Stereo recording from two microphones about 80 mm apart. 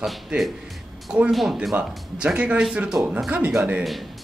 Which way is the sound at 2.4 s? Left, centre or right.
Centre.